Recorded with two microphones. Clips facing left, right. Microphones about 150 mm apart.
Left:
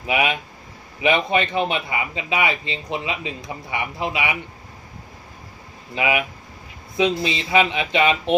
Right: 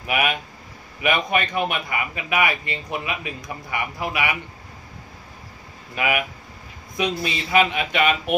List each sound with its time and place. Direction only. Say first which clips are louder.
0.0 s speech: left 2 dB; 25° left (ahead or behind)
5.9 s speech: left 2 dB; 20° left (ahead or behind)